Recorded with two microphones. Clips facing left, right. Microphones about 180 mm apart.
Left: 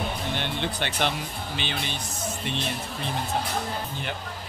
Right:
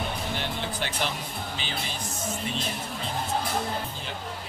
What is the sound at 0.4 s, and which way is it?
Speech, 70° left (ahead or behind).